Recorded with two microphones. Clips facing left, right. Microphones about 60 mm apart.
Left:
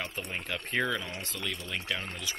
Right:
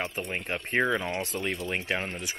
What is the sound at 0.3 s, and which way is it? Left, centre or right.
Speech, right.